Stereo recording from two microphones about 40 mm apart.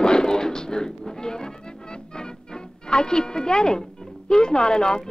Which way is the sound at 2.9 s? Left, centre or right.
Left.